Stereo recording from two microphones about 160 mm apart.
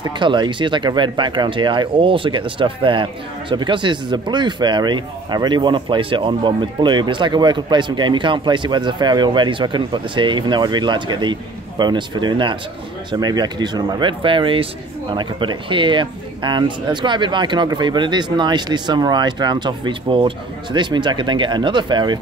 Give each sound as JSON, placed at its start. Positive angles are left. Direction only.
{"t": 0.0, "sound": "speech", "side_deg": -30}